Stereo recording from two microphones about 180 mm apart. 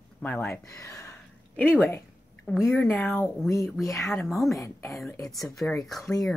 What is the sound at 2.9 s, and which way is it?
Speech, 5° left (ahead or behind).